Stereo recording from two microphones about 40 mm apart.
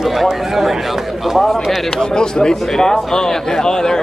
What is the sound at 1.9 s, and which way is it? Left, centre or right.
A man's voice, centre.